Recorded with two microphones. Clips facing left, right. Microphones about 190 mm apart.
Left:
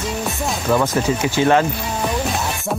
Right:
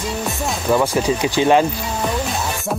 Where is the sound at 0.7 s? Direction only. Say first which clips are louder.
Right 1 dB; 15° right (ahead or behind).